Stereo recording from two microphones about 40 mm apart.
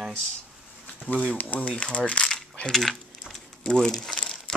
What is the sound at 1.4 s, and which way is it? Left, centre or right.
Speech, left.